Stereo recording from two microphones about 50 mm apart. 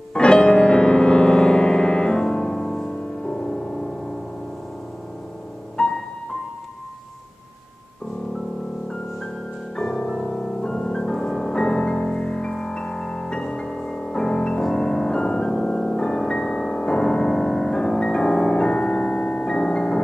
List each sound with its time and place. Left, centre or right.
0.1 s music: centre
5.8 s music: centre
9.8 s music: centre